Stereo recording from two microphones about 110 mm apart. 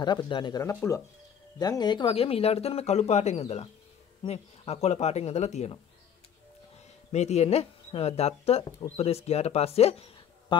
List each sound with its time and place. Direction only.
0.0 s speech: 40° left (ahead or behind)
2.1 s speech: 60° left (ahead or behind); by 5.8 s 85° left
7.1 s speech: 90° left; by 10.1 s 65° left (ahead or behind)
10.5 s music: 45° left (ahead or behind)